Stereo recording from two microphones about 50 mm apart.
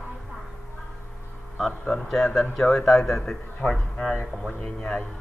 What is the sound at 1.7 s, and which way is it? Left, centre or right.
Speech, centre.